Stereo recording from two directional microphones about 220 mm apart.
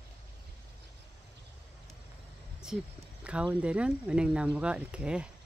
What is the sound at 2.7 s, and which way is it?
Speech, centre (ahead or behind).